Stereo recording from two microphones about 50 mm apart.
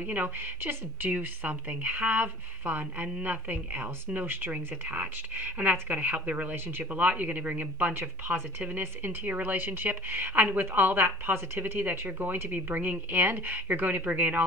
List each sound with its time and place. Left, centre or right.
0.0 s a woman's voice: right
6.5 s speech: right
6.9 s a woman's voice: right